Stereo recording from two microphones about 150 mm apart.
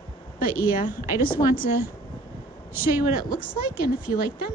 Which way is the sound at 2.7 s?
15° right (ahead or behind).